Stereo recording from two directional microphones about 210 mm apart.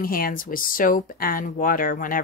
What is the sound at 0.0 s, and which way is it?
Speech, 45° left (ahead or behind).